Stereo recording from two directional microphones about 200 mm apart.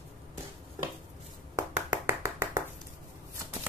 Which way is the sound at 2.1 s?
10° right (ahead or behind).